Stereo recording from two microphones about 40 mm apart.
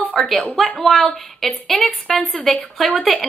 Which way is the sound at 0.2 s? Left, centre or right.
Centre.